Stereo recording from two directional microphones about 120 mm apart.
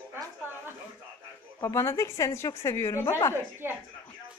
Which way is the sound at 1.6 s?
25° left (ahead or behind).